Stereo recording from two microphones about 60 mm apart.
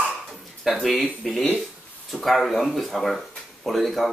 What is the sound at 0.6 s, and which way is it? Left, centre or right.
Speech, centre.